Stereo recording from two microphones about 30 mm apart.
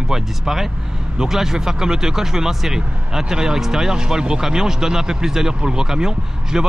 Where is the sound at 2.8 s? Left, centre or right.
Right.